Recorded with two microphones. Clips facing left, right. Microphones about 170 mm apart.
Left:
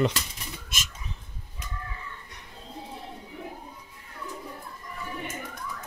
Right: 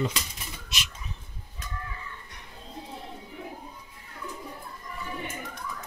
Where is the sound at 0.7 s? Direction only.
50° left (ahead or behind).